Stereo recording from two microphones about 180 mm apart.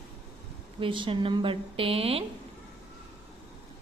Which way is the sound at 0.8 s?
30° right (ahead or behind).